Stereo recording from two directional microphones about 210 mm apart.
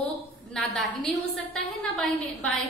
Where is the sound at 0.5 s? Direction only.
Centre (ahead or behind).